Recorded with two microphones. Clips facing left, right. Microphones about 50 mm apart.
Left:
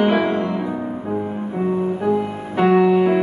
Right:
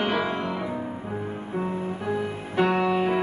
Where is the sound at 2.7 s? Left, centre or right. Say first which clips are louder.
Left 12 dB; centre.